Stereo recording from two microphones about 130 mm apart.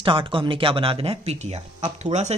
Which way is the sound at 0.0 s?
45° right (ahead or behind).